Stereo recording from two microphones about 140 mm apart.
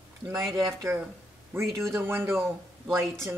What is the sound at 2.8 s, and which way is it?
Speech, centre (ahead or behind).